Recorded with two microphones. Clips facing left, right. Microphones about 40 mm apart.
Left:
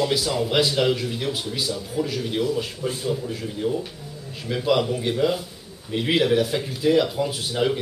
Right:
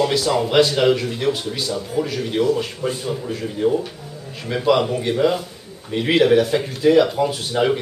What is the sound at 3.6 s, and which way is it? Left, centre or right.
Speech, right.